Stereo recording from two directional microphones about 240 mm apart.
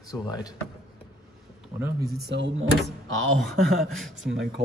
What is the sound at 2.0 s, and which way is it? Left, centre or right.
Speech, right.